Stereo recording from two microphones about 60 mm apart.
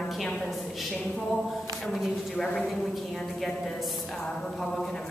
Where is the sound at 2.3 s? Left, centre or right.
Centre.